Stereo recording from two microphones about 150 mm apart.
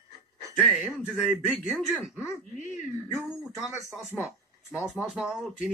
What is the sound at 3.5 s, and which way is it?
Speech, centre (ahead or behind).